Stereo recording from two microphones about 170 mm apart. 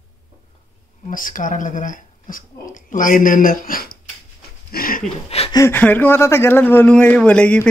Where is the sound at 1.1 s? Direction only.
50° left (ahead or behind).